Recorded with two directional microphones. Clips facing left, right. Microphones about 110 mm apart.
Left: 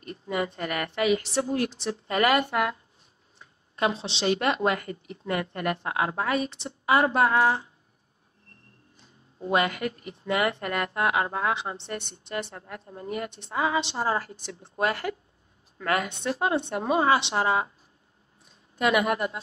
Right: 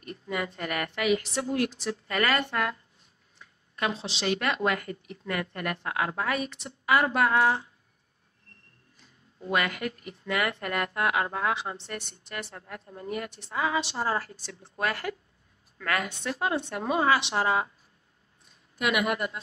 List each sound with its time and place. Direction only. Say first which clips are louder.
0.0 s a woman's voice: left 3 dB; 30° left (ahead or behind)
3.3 s a woman's voice: left 5 dB; 30° left (ahead or behind)
8.9 s a woman's voice: left 2 dB; 25° left (ahead or behind)
18.8 s a woman's voice: left 3 dB; 35° left (ahead or behind)